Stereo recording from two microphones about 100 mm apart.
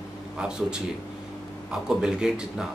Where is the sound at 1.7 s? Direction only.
5° right (ahead or behind).